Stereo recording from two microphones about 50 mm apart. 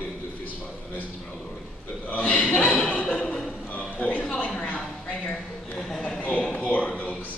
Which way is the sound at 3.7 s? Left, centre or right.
Left.